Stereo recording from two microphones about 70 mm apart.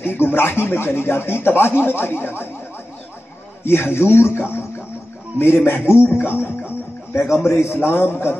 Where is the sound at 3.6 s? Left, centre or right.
Left.